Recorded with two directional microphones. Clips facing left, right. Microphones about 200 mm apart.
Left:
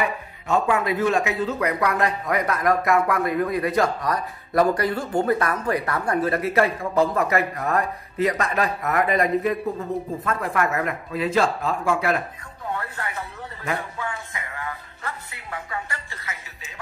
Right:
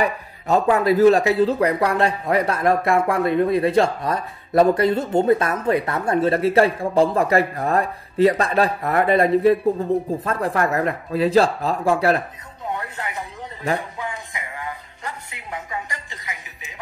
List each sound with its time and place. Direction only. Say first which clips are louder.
0.0 s a man's voice: right 4 dB; 35° right (ahead or behind)
12.6 s speech: right 1 dB; 15° right (ahead or behind)
13.7 s music: right 1 dB; 15° right (ahead or behind)